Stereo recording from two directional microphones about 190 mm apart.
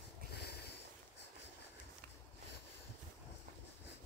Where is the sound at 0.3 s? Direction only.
60° left (ahead or behind).